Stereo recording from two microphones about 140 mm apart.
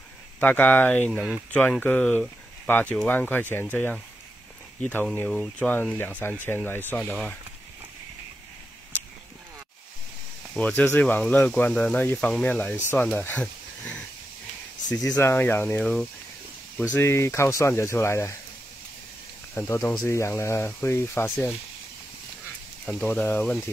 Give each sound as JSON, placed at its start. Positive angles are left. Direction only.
{"t": 0.4, "sound": "speech", "side_deg": 10}
{"t": 10.6, "sound": "speech", "side_deg": 10}
{"t": 15.0, "sound": "speech", "side_deg": 20}
{"t": 15.8, "sound": "speech", "side_deg": 5}
{"t": 16.9, "sound": "speech", "side_deg": 15}
{"t": 19.5, "sound": "speech", "side_deg": 20}
{"t": 22.8, "sound": "speech", "side_deg": 10}